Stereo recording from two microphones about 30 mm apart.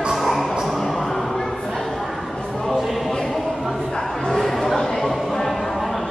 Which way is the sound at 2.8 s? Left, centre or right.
Centre.